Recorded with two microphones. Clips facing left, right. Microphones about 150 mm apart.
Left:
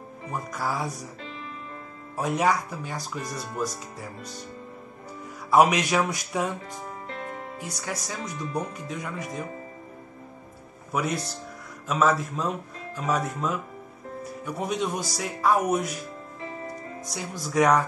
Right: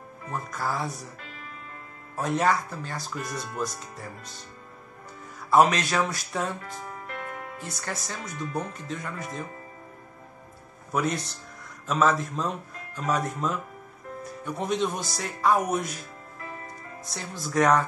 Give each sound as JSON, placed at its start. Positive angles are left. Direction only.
{"t": 0.3, "sound": "speech", "side_deg": 10}
{"t": 2.1, "sound": "speech", "side_deg": 10}
{"t": 5.5, "sound": "speech", "side_deg": 10}
{"t": 7.1, "sound": "music", "side_deg": 25}
{"t": 7.5, "sound": "speech", "side_deg": 10}
{"t": 10.9, "sound": "speech", "side_deg": 5}
{"t": 17.1, "sound": "speech", "side_deg": 10}